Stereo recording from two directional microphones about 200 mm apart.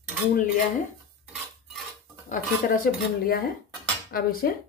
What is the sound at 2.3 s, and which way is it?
Speech, 45° left (ahead or behind).